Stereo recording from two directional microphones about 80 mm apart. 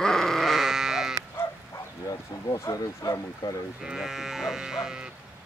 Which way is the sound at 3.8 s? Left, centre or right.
Centre.